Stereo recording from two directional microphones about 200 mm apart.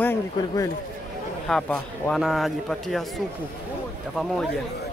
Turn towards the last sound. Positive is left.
turn(degrees=0)  # may be behind; listen again after turning